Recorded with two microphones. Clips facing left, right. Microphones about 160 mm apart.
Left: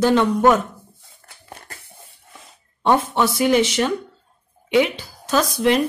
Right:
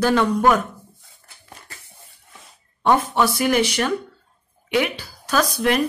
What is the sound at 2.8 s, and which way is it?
Speech, 25° left (ahead or behind).